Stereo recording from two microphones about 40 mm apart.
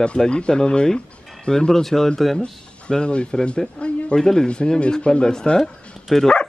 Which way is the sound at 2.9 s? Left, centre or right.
Left.